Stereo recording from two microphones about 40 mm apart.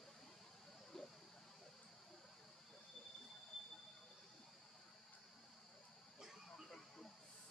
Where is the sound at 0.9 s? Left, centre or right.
Centre.